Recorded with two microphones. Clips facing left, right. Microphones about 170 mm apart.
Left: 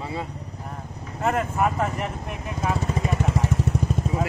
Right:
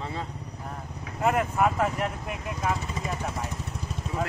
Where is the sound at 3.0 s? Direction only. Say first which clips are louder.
Left 6 dB; 90° left.